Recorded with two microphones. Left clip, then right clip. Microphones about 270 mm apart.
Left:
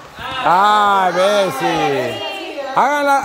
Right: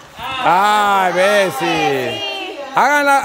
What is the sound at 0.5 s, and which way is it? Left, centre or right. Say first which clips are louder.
Speech: left 1 dB; centre.